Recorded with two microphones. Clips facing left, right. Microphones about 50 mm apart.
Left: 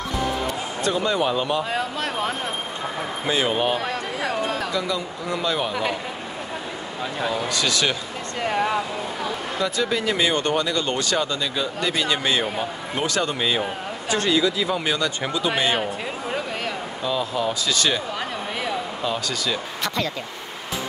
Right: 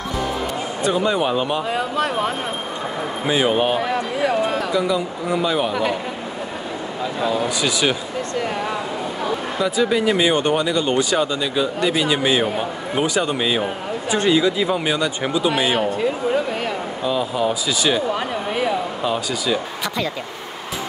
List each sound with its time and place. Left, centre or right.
0.8 s speech: centre
7.2 s speech: centre
9.6 s speech: centre
14.1 s speech: right